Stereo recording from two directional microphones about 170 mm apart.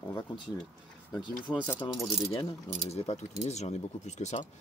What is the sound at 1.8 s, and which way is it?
Speech, 15° left (ahead or behind).